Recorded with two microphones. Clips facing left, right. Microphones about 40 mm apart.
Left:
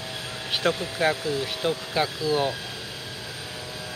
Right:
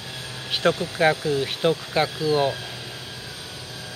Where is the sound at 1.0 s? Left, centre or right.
Centre.